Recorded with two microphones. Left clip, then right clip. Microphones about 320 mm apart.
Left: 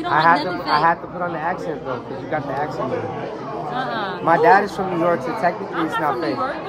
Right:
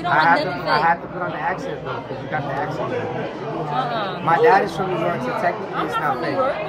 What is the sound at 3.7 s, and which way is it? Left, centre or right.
Speech, centre.